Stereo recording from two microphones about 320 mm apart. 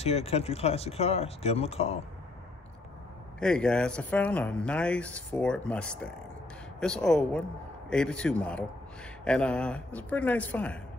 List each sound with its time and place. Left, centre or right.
0.0 s speech: centre
3.3 s speech: centre